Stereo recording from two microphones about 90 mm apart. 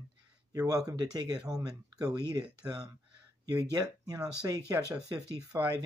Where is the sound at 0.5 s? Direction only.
40° right (ahead or behind).